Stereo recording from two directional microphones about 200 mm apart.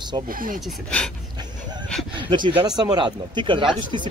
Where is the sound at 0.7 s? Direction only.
5° left (ahead or behind).